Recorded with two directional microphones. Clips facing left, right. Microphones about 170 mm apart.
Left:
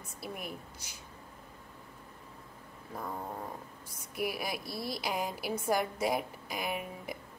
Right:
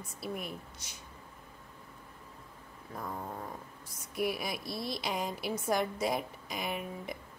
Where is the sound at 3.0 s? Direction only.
5° left (ahead or behind).